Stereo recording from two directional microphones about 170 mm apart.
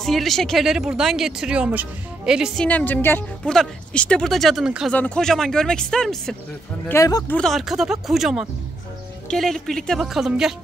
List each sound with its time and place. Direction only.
0.0 s speech: centre (ahead or behind)
6.9 s speech: 20° left (ahead or behind)
7.3 s speech: centre (ahead or behind)